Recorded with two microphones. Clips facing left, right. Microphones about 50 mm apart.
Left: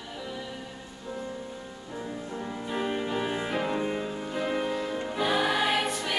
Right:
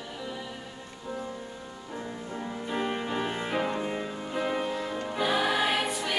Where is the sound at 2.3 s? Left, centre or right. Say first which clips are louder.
Right 1 dB; centre.